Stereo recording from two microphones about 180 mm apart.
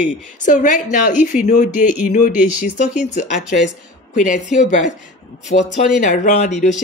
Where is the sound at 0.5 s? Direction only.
45° left (ahead or behind).